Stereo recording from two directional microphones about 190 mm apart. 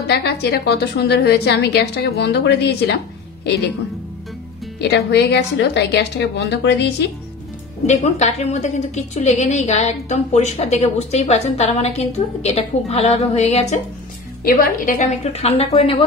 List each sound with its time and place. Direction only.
0.0 s a woman's voice: 60° left (ahead or behind)
4.7 s a woman's voice: 65° left (ahead or behind)
7.8 s a woman's voice: 40° left (ahead or behind)
14.4 s a woman's voice: 50° left (ahead or behind); by 16.0 s 30° left (ahead or behind)